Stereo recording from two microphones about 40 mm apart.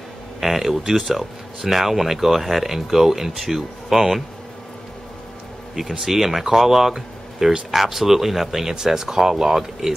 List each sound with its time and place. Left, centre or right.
0.4 s speech: centre
5.8 s speech: centre